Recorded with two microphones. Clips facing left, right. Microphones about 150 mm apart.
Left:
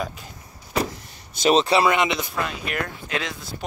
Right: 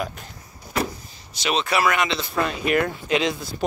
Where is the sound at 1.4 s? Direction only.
35° left (ahead or behind); by 2.2 s 20° left (ahead or behind).